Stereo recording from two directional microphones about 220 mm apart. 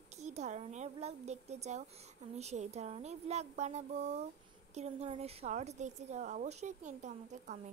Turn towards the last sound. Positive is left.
turn(degrees=-35)  # may be behind; listen again after turning